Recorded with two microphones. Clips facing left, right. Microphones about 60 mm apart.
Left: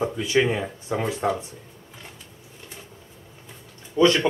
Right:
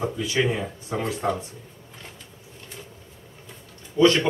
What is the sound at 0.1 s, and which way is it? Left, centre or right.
A man's voice, left.